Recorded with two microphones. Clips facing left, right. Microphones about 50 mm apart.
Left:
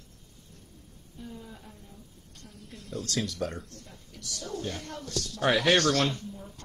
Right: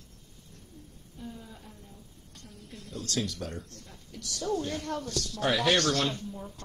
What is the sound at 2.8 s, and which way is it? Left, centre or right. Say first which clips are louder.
Speech: left 1 dB; left.